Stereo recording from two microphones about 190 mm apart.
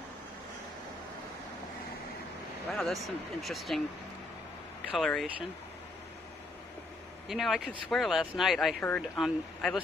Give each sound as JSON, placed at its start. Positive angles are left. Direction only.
{"t": 2.7, "sound": "speech", "side_deg": 0}
{"t": 4.9, "sound": "speech", "side_deg": 0}
{"t": 7.2, "sound": "speech", "side_deg": 0}